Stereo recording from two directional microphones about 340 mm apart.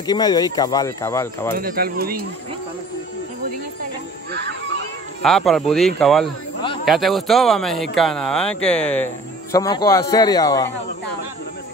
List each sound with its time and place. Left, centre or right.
0.0 s speech: centre
1.6 s speech: right
4.3 s children playing: right
5.2 s speech: centre